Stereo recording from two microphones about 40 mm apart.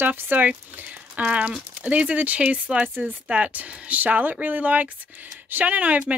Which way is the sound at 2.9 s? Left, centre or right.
Right.